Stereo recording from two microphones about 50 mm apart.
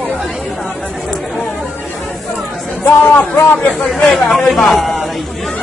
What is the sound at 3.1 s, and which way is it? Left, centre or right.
Speech, left.